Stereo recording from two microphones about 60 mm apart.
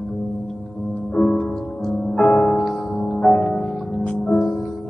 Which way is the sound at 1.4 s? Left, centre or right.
Centre.